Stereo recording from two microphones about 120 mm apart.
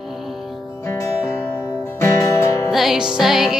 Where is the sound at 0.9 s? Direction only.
20° left (ahead or behind).